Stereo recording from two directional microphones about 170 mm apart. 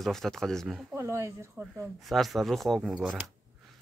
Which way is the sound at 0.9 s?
15° right (ahead or behind).